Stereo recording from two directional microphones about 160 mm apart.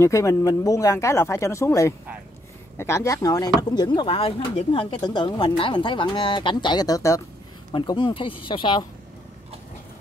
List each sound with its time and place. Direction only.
0.0 s speech: 20° left (ahead or behind)